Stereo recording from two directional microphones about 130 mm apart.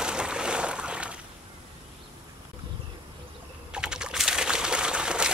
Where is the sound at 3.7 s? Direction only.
5° right (ahead or behind).